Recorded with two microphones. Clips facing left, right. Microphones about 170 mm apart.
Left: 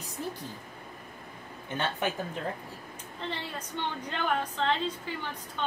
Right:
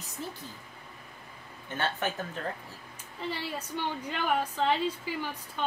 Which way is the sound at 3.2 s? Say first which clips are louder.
Right 2 dB; 10° right (ahead or behind).